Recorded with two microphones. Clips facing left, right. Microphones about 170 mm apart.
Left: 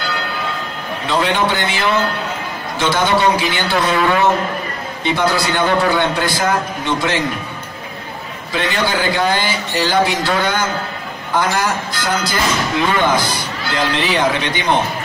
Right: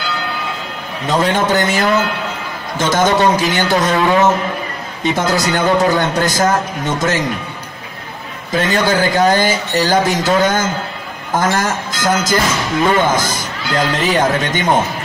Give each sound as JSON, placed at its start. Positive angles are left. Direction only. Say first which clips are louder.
{"t": 1.0, "sound": "a man's voice", "louder": "right 2 dB", "side_deg": -45}
{"t": 5.0, "sound": "a man's voice", "louder": "right 1 dB", "side_deg": -45}
{"t": 8.5, "sound": "a man's voice", "louder": "right 4 dB", "side_deg": -45}